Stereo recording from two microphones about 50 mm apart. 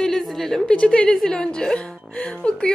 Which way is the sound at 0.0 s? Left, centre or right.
Centre.